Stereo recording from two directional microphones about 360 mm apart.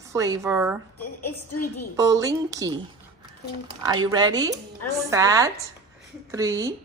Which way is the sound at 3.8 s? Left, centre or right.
Centre.